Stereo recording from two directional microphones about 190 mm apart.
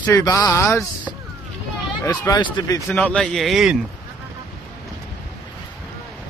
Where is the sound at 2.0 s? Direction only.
20° left (ahead or behind).